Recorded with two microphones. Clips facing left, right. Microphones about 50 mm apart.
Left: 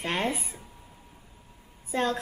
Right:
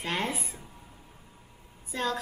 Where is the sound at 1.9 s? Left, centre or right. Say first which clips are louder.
Left 4 dB; left.